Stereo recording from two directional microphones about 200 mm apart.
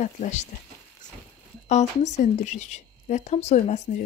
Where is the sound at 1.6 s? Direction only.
35° left (ahead or behind).